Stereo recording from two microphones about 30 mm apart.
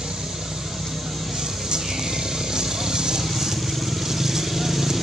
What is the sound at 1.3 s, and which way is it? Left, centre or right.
Vehicle, centre.